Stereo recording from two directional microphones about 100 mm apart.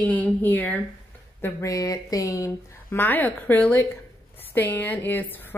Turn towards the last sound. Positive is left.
turn(degrees=20)  # may be behind; listen again after turning